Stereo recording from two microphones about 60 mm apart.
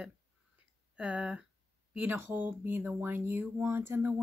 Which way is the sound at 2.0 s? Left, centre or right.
Right.